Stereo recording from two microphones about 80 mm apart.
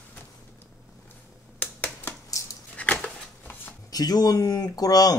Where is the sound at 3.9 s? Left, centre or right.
Left.